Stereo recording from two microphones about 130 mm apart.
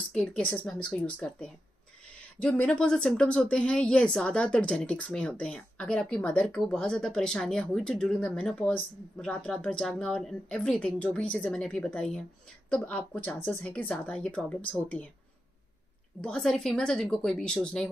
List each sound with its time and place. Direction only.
0.1 s speech: 10° left (ahead or behind)
16.2 s speech: 5° left (ahead or behind)